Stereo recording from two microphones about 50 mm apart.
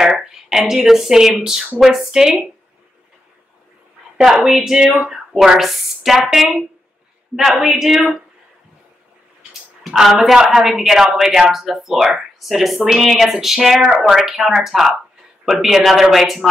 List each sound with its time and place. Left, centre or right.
0.5 s speech: centre
4.2 s a woman's voice: centre
9.4 s a sound: centre
10.4 s speech: centre
10.7 s a woman's voice: centre